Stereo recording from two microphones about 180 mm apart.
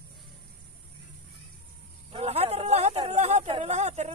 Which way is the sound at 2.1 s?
35° right (ahead or behind).